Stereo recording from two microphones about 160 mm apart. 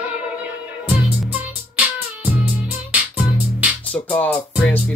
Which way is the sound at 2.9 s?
10° right (ahead or behind).